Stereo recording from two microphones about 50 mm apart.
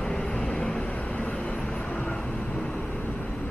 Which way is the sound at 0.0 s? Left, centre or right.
Centre.